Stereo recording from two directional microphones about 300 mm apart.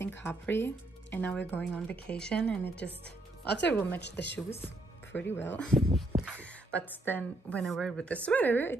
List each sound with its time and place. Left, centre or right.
0.2 s a woman's voice: centre
3.4 s speech: left
3.7 s a woman's voice: centre
4.0 s speech: left
4.5 s a woman's voice: centre